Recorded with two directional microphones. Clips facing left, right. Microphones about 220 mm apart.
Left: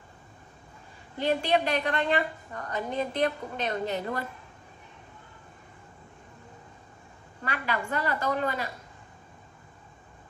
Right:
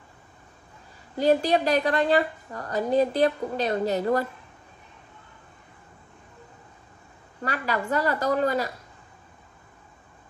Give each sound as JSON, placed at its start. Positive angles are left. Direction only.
{"t": 1.1, "sound": "a woman's voice", "side_deg": -40}
{"t": 7.4, "sound": "a woman's voice", "side_deg": -40}